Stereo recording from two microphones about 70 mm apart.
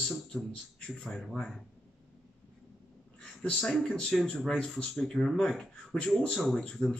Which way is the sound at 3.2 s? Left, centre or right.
Centre.